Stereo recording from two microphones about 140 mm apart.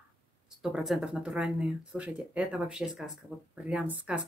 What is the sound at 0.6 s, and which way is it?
Speech, 5° right (ahead or behind).